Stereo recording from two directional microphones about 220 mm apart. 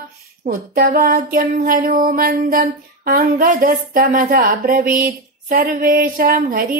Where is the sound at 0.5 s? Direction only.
40° right (ahead or behind).